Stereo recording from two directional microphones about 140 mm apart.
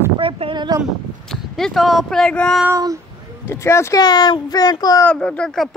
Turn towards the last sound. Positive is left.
turn(degrees=5)  # may be behind; listen again after turning